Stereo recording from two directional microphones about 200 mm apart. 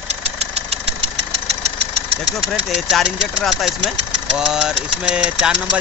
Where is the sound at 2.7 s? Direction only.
Centre (ahead or behind).